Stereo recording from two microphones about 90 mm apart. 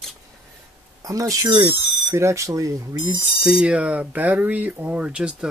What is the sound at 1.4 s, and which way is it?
Speech, 55° right (ahead or behind).